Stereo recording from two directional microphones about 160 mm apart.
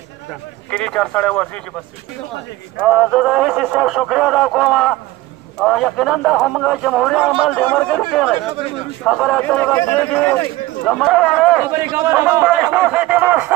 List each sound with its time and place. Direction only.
0.7 s a man's voice: 5° left (ahead or behind)
2.8 s speech: 5° right (ahead or behind)
8.5 s a man's voice: 35° right (ahead or behind)
9.0 s a man's voice: centre (ahead or behind)
11.7 s speech: 10° right (ahead or behind)